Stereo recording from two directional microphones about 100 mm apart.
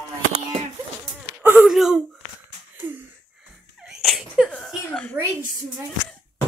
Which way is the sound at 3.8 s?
Centre (ahead or behind).